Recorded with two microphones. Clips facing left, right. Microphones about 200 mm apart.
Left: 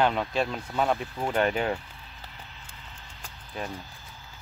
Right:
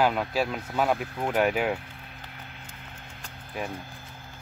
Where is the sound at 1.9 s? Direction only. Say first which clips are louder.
Right 2 dB; 60° right (ahead or behind).